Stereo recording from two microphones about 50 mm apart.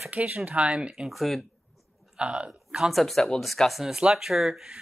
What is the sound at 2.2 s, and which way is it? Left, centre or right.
Speech, right.